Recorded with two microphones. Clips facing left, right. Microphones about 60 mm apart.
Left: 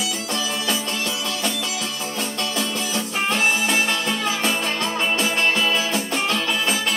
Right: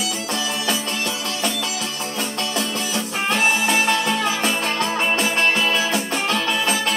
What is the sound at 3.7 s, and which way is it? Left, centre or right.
Music, centre.